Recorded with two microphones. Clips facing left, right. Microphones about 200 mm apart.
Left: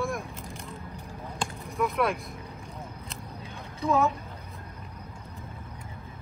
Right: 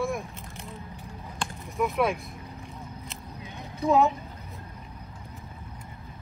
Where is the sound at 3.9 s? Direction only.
15° right (ahead or behind).